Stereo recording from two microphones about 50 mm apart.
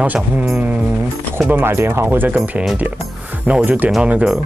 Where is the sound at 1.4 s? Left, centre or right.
Right.